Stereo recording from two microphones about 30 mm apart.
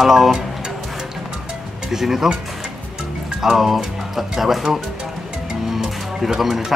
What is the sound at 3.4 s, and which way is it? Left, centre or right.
Speech, centre.